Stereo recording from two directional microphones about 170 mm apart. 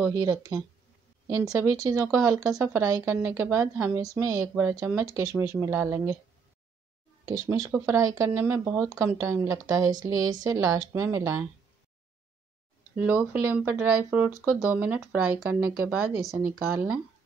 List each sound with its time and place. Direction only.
0.0 s speech: 20° right (ahead or behind)
7.2 s speech: 20° right (ahead or behind)
12.9 s speech: 10° right (ahead or behind)